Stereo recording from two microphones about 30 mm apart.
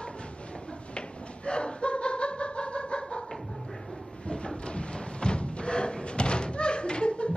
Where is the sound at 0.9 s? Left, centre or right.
Left.